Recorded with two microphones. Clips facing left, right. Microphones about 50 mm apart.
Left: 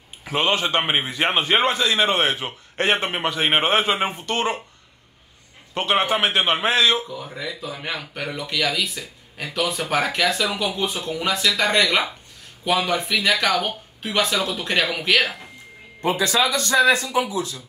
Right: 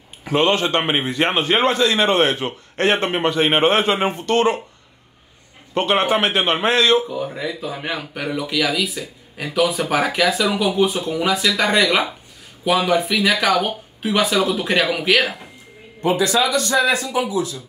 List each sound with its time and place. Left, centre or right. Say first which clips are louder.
0.2 s speech: right 4 dB; centre
5.8 s speech: right 3 dB; centre
7.4 s speech: right 4 dB; centre
16.4 s speech: even; right